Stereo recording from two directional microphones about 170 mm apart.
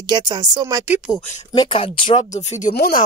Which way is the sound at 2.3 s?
45° left (ahead or behind).